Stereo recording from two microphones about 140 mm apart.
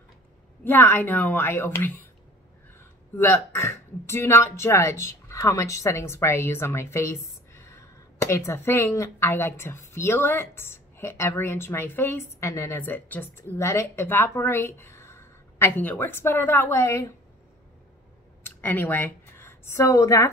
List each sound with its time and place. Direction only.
0.7 s a woman's voice: 15° left (ahead or behind)
18.4 s a woman's voice: 15° left (ahead or behind)